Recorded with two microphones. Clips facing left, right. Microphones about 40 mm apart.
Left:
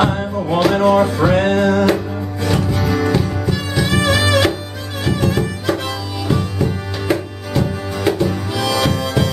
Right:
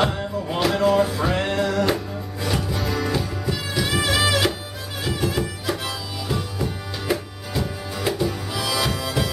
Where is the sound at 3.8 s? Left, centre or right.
Centre.